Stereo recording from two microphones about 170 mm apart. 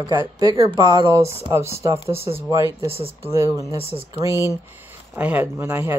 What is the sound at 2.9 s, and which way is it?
Speech, 35° right (ahead or behind).